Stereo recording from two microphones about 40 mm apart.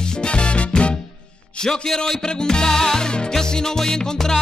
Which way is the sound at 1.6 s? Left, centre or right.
Centre.